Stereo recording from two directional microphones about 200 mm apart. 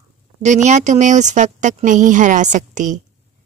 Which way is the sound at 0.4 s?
35° right (ahead or behind).